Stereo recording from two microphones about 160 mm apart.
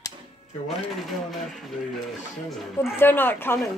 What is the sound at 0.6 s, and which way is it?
Coin, centre (ahead or behind).